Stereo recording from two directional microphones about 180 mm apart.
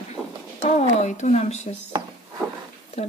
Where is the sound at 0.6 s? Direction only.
35° left (ahead or behind).